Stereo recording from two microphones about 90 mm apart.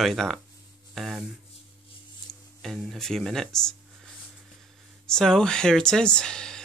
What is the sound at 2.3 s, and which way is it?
Speech, 5° left (ahead or behind).